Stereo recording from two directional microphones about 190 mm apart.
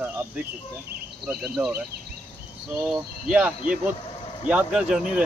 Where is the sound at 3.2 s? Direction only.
5° right (ahead or behind).